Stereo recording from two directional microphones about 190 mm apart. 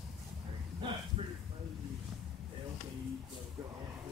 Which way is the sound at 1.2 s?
30° right (ahead or behind).